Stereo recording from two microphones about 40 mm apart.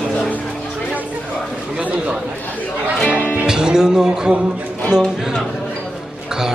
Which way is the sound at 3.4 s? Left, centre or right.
Centre.